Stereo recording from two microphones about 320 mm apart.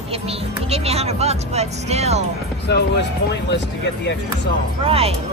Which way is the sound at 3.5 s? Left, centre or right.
Left.